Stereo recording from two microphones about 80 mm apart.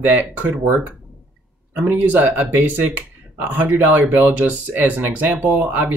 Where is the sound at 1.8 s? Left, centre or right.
Centre.